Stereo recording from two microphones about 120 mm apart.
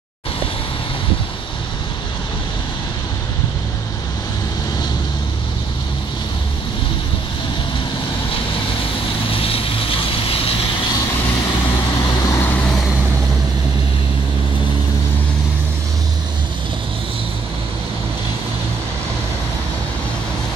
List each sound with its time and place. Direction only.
9.3 s vehicle: 50° left (ahead or behind)
12.3 s vehicle: 20° left (ahead or behind)